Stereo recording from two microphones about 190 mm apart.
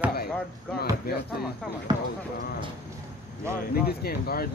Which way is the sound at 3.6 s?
50° left (ahead or behind).